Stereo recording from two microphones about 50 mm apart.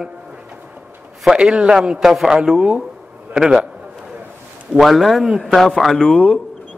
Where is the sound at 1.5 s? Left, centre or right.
Right.